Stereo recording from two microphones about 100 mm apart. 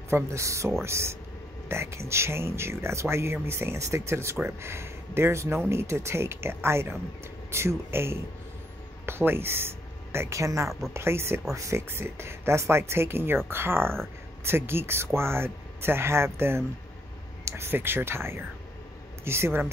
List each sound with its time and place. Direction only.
0.1 s speech: 30° right (ahead or behind)